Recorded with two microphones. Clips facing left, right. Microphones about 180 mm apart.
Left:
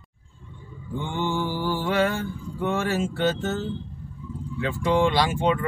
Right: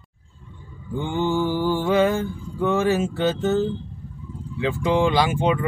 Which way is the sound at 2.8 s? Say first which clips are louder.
Right 4 dB; 15° right (ahead or behind).